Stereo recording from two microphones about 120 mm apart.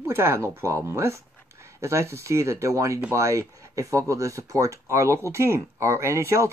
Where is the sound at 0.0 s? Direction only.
20° right (ahead or behind).